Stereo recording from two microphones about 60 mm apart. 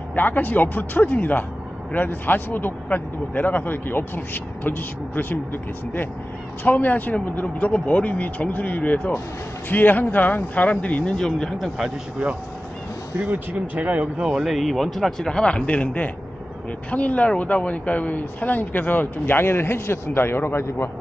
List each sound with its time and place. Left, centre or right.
0.1 s speech: left; by 11.5 s centre
13.7 s speech: right
14.2 s speech: centre
14.5 s speech: centre; by 20.9 s left